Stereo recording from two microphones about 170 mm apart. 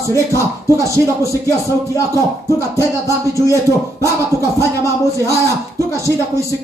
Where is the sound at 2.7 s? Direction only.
20° left (ahead or behind).